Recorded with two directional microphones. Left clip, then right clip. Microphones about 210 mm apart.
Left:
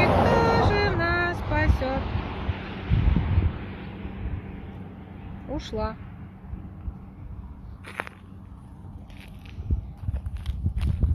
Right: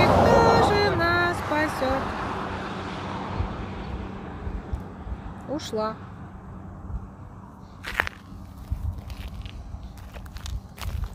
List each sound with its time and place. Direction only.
0.0 s vehicle: 30° left (ahead or behind)
0.3 s music: 5° right (ahead or behind)
1.7 s wind: 30° right (ahead or behind)
5.5 s speech: 5° right (ahead or behind)
7.8 s walk: 5° left (ahead or behind)